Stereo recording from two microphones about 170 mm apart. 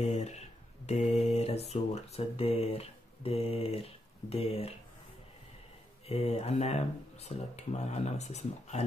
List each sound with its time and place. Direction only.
0.0 s speech: 40° left (ahead or behind)
6.0 s speech: 35° left (ahead or behind)